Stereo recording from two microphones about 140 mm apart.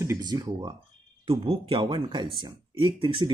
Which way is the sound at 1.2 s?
40° right (ahead or behind).